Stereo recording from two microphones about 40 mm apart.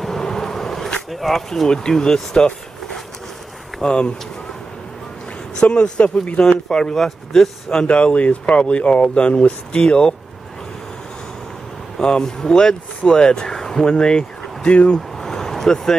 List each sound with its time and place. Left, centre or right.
0.2 s a sound: centre
1.1 s speech: centre
1.7 s speech: centre
5.6 s speech: left
6.7 s speech: centre
7.3 s speech: centre
7.8 s speech: left
12.0 s speech: centre
15.0 s vehicle: centre